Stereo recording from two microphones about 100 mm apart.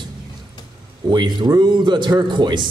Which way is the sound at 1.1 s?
45° right (ahead or behind).